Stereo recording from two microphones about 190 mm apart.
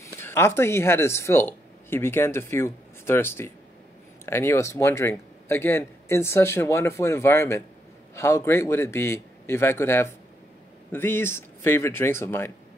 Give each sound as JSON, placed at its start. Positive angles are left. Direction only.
{"t": 0.0, "sound": "speech", "side_deg": 15}